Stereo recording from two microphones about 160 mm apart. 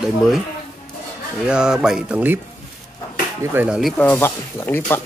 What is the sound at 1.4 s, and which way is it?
Speech, 5° right (ahead or behind).